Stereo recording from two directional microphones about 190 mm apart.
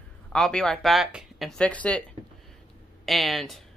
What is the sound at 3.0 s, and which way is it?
Speech, centre (ahead or behind).